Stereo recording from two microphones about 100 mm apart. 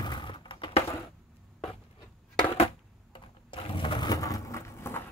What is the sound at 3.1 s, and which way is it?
Sewing machine, 55° left (ahead or behind).